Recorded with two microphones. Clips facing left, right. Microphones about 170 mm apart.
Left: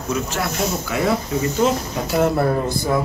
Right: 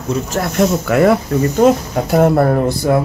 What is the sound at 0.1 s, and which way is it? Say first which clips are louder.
Speech: right 4 dB; 45° right (ahead or behind).